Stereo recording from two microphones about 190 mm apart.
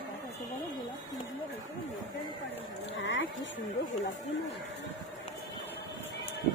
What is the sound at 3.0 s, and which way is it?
Speech, 75° left (ahead or behind).